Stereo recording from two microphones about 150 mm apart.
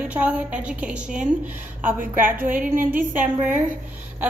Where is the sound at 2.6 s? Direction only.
60° right (ahead or behind).